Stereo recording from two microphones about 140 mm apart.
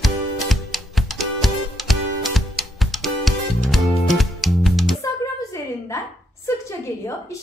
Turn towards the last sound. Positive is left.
turn(degrees=20)  # may be behind; listen again after turning